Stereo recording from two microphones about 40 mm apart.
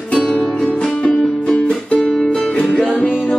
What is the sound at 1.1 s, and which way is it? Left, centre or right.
Music, centre.